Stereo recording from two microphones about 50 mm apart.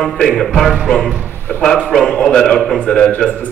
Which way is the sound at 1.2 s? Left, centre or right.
Left.